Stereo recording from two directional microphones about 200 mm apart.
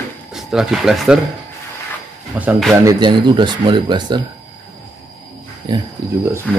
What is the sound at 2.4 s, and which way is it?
Speech, 5° right (ahead or behind).